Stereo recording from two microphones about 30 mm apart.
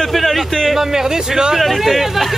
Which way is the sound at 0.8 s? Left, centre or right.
Centre.